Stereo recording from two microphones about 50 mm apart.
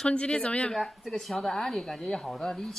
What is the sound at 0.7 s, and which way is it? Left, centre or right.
A woman's voice, centre.